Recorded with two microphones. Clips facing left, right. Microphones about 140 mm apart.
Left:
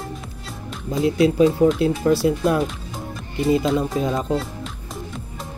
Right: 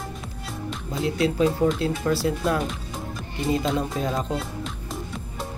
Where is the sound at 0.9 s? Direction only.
15° left (ahead or behind).